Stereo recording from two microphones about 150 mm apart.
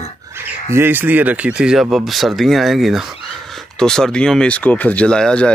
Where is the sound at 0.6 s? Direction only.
15° right (ahead or behind).